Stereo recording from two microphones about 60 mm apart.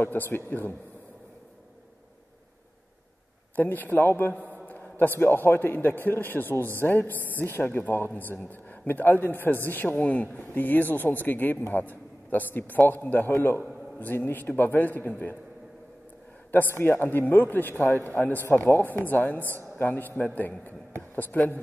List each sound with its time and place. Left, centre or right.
0.0 s a man's voice: left
3.5 s a man's voice: left
16.5 s a man's voice: left